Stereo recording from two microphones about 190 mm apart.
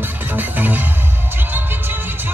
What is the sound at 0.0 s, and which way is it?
Music, 10° right (ahead or behind).